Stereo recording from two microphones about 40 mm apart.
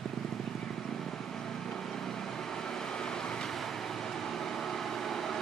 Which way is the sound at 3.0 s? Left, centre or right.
Centre.